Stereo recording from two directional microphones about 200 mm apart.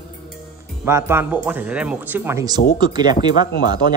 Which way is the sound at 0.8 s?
15° right (ahead or behind).